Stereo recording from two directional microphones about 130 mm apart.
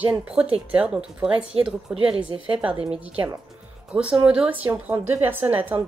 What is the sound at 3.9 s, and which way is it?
Speech, 10° right (ahead or behind).